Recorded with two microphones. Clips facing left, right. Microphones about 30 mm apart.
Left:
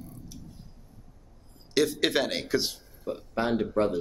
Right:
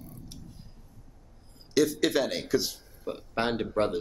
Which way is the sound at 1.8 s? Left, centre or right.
Left.